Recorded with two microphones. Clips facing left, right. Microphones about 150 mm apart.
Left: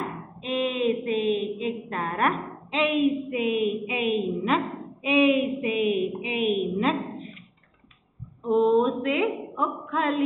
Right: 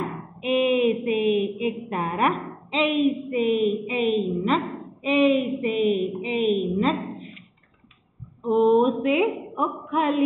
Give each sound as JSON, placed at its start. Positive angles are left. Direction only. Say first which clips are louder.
{"t": 0.4, "sound": "a sound", "louder": "right 5 dB", "side_deg": -15}
{"t": 0.9, "sound": "a woman's voice", "louder": "right 3 dB", "side_deg": 0}
{"t": 8.4, "sound": "speech", "louder": "right 2 dB", "side_deg": 0}
{"t": 9.1, "sound": "a woman's voice", "louder": "right 3 dB", "side_deg": -20}
{"t": 9.7, "sound": "female singing", "louder": "right 4 dB", "side_deg": 0}